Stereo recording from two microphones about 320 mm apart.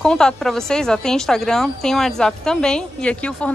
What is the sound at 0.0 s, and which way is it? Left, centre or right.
A woman's voice, centre.